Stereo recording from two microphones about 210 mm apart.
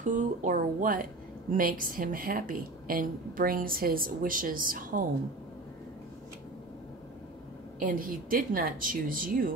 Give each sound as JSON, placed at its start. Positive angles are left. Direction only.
{"t": 0.0, "sound": "speech", "side_deg": -35}
{"t": 7.8, "sound": "speech", "side_deg": -40}